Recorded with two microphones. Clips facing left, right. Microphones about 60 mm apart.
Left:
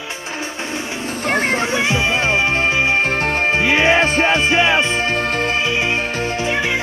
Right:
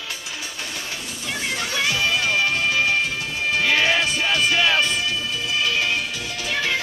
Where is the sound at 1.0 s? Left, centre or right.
Left.